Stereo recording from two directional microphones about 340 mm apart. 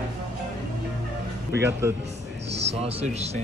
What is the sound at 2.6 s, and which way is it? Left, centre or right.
Speech, centre.